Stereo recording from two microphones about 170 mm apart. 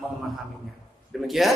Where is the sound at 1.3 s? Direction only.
Centre (ahead or behind).